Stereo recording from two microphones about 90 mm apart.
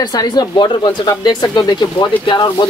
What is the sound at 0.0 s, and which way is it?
Speech, 50° left (ahead or behind).